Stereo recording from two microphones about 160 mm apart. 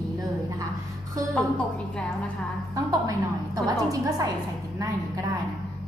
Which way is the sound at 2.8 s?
20° right (ahead or behind).